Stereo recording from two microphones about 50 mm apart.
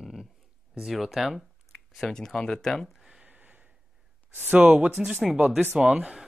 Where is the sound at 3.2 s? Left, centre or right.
Right.